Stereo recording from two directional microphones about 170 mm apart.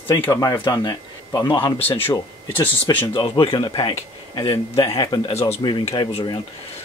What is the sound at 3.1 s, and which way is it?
Speech, 30° left (ahead or behind).